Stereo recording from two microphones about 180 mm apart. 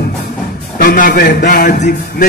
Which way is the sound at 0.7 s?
55° left (ahead or behind).